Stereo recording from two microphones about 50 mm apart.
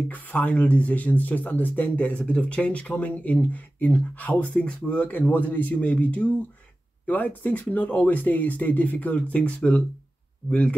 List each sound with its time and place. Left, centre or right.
0.1 s speech: left